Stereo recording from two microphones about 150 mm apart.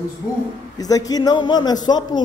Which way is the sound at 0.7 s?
25° left (ahead or behind).